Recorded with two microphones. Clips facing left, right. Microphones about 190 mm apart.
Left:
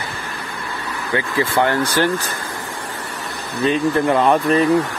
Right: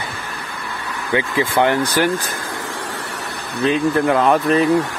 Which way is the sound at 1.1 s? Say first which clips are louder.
Right 1 dB; 20° right (ahead or behind).